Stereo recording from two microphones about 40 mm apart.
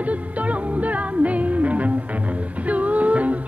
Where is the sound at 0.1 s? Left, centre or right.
Right.